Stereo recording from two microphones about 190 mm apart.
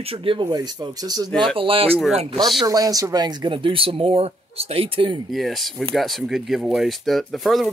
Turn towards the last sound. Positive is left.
turn(degrees=0)  # may be behind; listen again after turning